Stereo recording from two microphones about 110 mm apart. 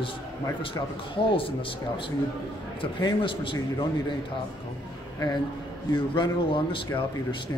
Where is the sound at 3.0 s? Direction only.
50° left (ahead or behind).